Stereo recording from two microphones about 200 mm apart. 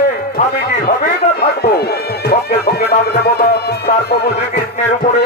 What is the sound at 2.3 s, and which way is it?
Speech, 50° left (ahead or behind).